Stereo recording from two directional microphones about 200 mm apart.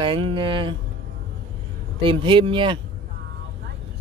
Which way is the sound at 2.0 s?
25° right (ahead or behind).